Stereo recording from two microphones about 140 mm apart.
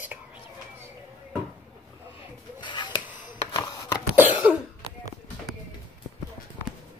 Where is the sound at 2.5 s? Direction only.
35° left (ahead or behind).